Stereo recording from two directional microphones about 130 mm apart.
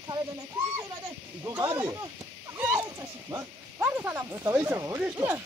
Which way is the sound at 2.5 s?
20° right (ahead or behind).